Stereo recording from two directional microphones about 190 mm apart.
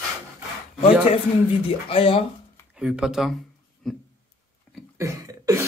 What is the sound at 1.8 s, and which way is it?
Speech, 30° left (ahead or behind).